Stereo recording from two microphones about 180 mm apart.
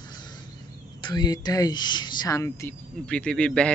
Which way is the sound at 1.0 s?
25° left (ahead or behind).